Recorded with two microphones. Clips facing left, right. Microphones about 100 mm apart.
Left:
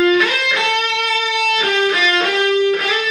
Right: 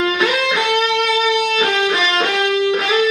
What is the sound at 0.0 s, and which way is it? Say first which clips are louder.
Music: left 2 dB; 20° right (ahead or behind).